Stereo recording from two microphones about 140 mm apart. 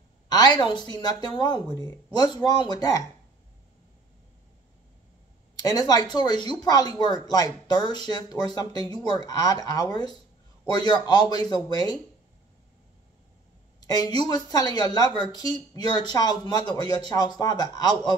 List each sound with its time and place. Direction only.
0.3 s a woman's voice: 30° left (ahead or behind)
5.6 s a woman's voice: 25° left (ahead or behind)
13.7 s speech: 30° left (ahead or behind)